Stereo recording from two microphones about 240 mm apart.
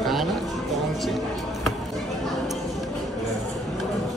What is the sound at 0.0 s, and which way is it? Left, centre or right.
Music, centre.